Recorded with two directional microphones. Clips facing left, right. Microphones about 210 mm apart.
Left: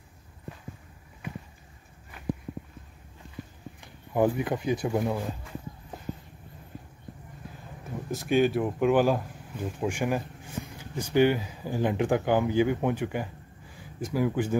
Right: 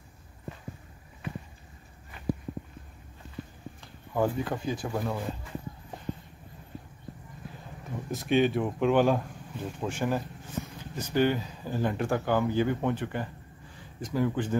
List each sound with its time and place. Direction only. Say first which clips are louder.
3.8 s speech: left 3 dB; 15° left (ahead or behind)
8.1 s speech: left 1 dB; centre (ahead or behind)